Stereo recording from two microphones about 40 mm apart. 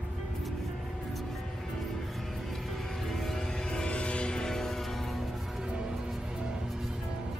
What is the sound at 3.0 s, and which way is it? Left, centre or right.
Music, centre.